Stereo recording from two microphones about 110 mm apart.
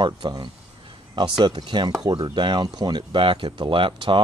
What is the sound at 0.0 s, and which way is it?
Speech, 40° right (ahead or behind).